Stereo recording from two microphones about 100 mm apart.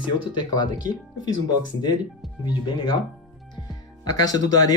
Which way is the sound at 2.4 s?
50° left (ahead or behind).